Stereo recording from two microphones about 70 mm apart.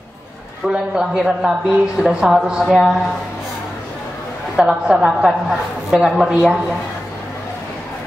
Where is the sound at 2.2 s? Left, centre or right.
Centre.